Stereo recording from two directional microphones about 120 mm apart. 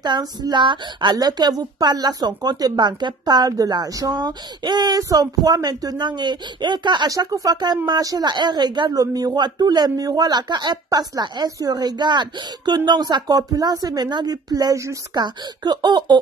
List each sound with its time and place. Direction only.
0.0 s a woman's voice: 35° right (ahead or behind)
15.2 s a woman's voice: 40° right (ahead or behind)